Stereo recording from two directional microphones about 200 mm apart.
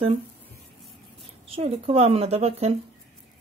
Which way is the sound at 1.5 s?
30° right (ahead or behind).